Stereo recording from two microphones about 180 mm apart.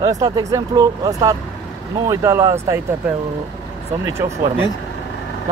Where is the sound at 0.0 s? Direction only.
20° right (ahead or behind).